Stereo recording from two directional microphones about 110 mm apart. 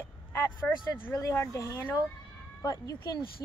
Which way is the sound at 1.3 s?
25° left (ahead or behind).